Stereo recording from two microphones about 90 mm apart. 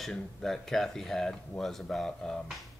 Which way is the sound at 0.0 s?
5° left (ahead or behind).